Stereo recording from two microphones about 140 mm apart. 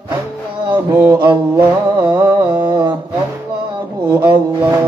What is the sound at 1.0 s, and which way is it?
Mantra, 15° right (ahead or behind).